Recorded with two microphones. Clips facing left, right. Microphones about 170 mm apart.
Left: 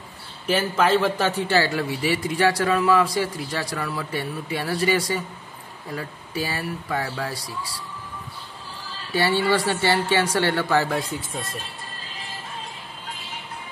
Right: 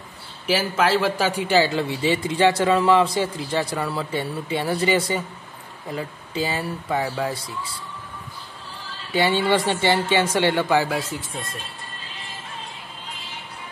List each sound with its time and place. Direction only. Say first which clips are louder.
0.5 s a man's voice: even; 5° right (ahead or behind); by 7.7 s 25° right (ahead or behind)
9.1 s a man's voice: right 1 dB; 20° right (ahead or behind); by 11.2 s centre (ahead or behind)